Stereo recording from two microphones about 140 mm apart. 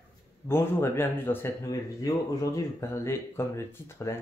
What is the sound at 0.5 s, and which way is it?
Speech, 15° left (ahead or behind).